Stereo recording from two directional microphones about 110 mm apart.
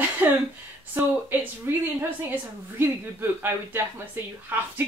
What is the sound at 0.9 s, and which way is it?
Speech, 20° right (ahead or behind).